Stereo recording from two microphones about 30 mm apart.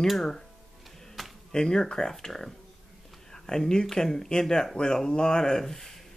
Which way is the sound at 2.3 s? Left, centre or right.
Centre.